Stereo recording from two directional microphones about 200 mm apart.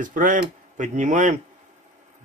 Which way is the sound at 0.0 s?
40° right (ahead or behind).